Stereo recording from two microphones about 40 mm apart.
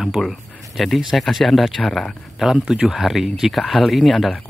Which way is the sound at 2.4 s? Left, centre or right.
Centre.